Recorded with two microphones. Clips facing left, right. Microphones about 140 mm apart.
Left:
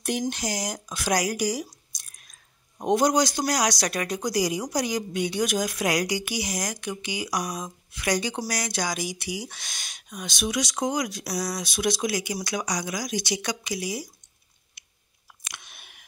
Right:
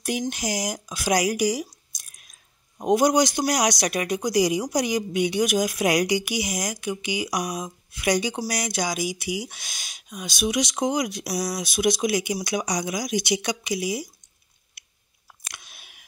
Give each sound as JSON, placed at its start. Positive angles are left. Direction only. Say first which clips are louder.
{"t": 0.3, "sound": "speech", "louder": "right 2 dB", "side_deg": -10}
{"t": 10.5, "sound": "speech", "louder": "right 2 dB", "side_deg": -20}
{"t": 15.5, "sound": "a sound", "louder": "left 1 dB", "side_deg": -5}